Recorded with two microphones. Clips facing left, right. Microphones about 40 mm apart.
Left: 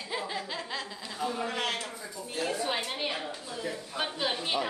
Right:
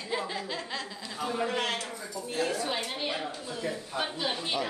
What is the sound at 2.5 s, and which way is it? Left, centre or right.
Speech, centre.